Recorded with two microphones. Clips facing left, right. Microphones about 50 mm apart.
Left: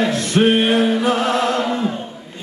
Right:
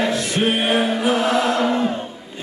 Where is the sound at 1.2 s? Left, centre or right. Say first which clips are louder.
Even; centre.